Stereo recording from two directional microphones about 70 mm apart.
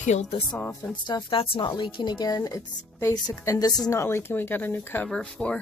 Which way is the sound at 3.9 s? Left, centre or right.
Left.